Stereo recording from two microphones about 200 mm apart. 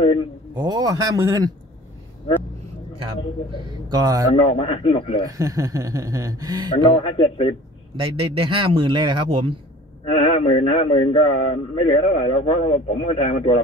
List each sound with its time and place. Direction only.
0.0 s a sound: 25° left (ahead or behind)
0.6 s a man's voice: 20° right (ahead or behind)
3.6 s a man's voice: 20° right (ahead or behind)
4.5 s a man's voice: 25° left (ahead or behind)
5.2 s speech: 15° right (ahead or behind)
6.9 s a man's voice: 25° left (ahead or behind)
7.9 s a man's voice: 25° right (ahead or behind)
10.1 s a man's voice: 25° left (ahead or behind)